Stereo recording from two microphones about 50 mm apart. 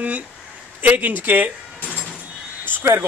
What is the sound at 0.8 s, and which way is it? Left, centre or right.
Speech, right.